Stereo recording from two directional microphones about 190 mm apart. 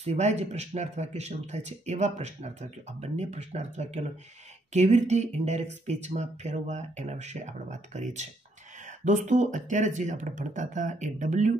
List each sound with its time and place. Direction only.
0.0 s speech: 35° right (ahead or behind)